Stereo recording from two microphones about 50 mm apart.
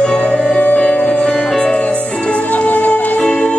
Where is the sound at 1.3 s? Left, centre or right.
Centre.